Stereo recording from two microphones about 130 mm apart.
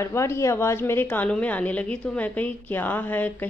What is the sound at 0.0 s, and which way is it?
A woman's voice, 20° left (ahead or behind).